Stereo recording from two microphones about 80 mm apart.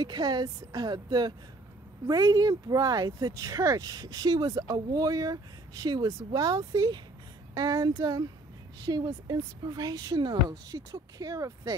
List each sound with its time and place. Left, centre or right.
0.0 s speech: right